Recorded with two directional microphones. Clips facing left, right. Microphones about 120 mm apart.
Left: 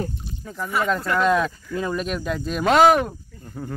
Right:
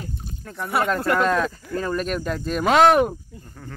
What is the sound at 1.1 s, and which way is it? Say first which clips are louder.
Speech: left 3 dB; centre (ahead or behind).